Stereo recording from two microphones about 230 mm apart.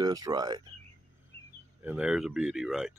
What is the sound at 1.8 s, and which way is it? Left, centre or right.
Speech, centre.